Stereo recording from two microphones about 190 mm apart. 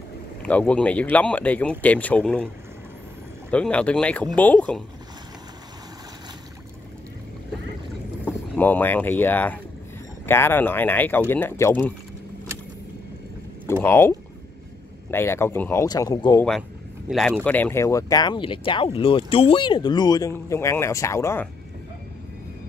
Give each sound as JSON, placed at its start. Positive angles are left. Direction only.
{"t": 0.4, "sound": "speech", "side_deg": 5}
{"t": 8.5, "sound": "speech", "side_deg": 10}
{"t": 13.7, "sound": "speech", "side_deg": 15}
{"t": 17.1, "sound": "speech", "side_deg": 5}